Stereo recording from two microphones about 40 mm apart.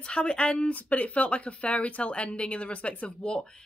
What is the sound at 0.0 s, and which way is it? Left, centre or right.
Speech, left.